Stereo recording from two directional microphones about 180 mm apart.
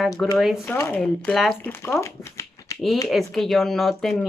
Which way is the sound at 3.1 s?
Centre (ahead or behind).